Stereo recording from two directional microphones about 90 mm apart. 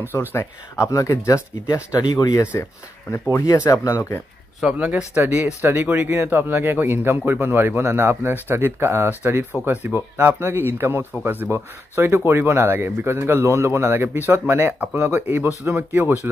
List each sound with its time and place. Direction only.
0.1 s speech: 25° left (ahead or behind); by 2.4 s 45° left (ahead or behind)
3.1 s speech: 35° left (ahead or behind)
4.7 s speech: 15° right (ahead or behind)